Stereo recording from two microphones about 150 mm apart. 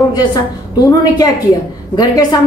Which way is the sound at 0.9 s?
25° left (ahead or behind).